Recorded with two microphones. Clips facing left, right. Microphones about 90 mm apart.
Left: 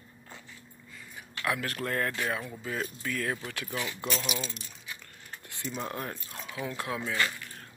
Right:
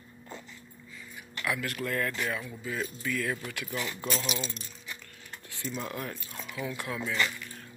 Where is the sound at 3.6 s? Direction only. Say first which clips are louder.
Even; 15° left (ahead or behind).